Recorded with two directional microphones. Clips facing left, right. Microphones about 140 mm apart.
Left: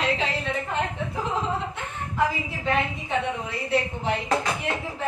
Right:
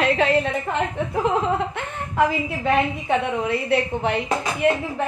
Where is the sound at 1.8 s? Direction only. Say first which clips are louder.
Right 4 dB; 60° right (ahead or behind).